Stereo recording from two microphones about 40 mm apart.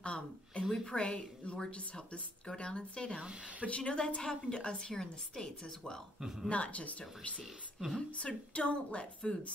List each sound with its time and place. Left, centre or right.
0.0 s a sound: left
0.8 s a woman's voice: left
3.2 s a woman's voice: right
3.6 s a woman's voice: left
6.2 s a woman's voice: centre
6.5 s a woman's voice: left